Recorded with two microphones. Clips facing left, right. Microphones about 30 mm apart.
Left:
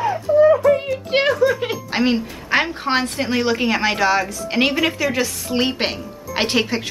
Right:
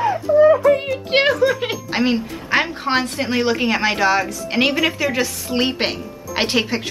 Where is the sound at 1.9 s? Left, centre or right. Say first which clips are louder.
Even; centre.